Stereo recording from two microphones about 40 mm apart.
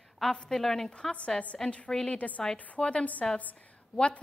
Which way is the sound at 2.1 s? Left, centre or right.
Left.